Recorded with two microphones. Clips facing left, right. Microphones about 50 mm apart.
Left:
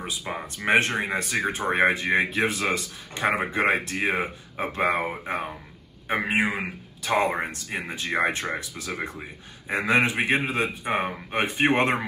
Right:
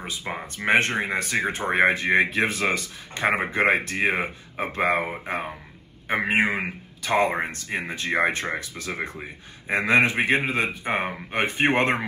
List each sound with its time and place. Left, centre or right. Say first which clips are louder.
0.3 s speech: right 1 dB; centre
0.6 s speech: right 1 dB; right
5.2 s speech: even; right
6.3 s speech: right 2 dB; right